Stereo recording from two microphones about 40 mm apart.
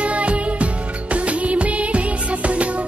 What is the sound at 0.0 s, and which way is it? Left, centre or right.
Music, right.